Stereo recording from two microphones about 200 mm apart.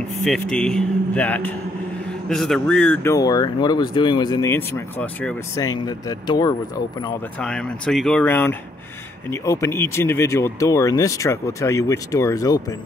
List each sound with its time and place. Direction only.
0.2 s a man's voice: 5° left (ahead or behind)
5.6 s speech: 20° left (ahead or behind)
7.3 s a man's voice: 5° left (ahead or behind)